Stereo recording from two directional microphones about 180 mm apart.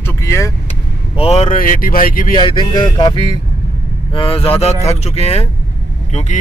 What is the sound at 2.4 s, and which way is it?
Speech, 25° left (ahead or behind).